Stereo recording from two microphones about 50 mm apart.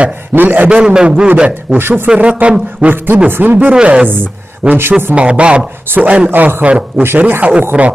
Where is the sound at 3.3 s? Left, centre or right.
Right.